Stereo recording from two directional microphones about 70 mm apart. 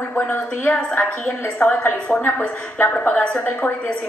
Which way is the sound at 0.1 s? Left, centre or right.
Left.